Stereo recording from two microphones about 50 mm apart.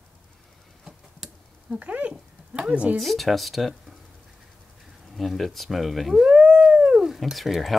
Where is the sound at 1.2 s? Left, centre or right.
Centre.